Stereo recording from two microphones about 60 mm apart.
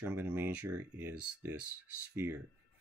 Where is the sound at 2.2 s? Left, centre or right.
Right.